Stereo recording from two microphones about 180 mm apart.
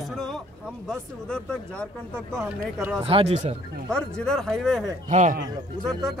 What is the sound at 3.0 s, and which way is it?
Speech, 35° right (ahead or behind).